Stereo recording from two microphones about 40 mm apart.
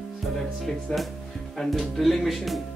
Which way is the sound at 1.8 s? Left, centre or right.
Centre.